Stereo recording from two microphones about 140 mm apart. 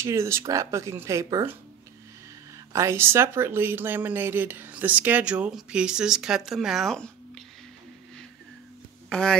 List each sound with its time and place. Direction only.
0.0 s speech: 20° right (ahead or behind)
2.7 s speech: 20° right (ahead or behind); by 7.4 s centre (ahead or behind)
9.1 s speech: 5° left (ahead or behind)